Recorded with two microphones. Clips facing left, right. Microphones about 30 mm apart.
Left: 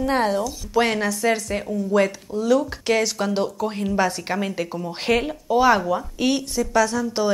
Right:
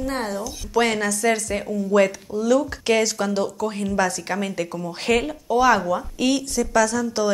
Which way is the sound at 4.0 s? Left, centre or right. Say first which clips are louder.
Even; left.